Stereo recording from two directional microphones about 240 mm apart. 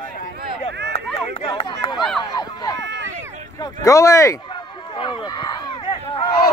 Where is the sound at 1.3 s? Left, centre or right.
Left.